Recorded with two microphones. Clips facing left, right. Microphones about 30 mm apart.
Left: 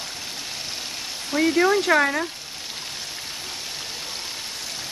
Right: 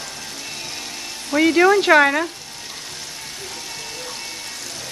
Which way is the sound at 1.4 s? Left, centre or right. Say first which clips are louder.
Right 5 dB; right.